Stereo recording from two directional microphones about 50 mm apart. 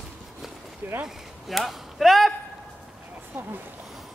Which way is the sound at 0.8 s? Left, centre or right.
Right.